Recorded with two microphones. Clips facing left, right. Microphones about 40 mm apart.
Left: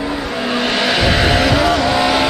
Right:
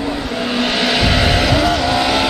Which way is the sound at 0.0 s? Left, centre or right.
Centre.